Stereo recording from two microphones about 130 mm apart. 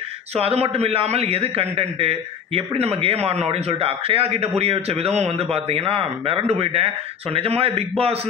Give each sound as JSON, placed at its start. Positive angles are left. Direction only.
{"t": 0.3, "sound": "a man's voice", "side_deg": -50}